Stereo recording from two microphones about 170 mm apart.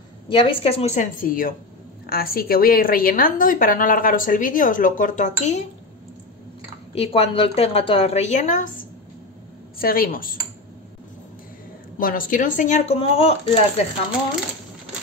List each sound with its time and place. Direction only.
0.3 s a woman's voice: 30° left (ahead or behind)
7.0 s a woman's voice: 35° left (ahead or behind)
9.8 s a woman's voice: 60° left (ahead or behind)
12.0 s a woman's voice: 55° left (ahead or behind); by 13.8 s 35° left (ahead or behind)